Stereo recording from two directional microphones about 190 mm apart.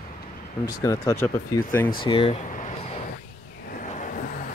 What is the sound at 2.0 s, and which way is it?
Speech, 30° left (ahead or behind).